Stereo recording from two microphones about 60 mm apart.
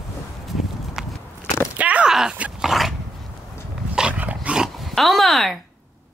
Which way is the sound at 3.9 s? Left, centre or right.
Centre.